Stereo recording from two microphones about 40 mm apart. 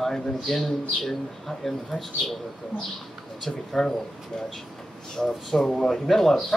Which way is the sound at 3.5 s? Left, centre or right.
Centre.